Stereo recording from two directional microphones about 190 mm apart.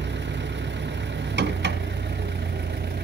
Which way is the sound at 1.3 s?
65° right (ahead or behind).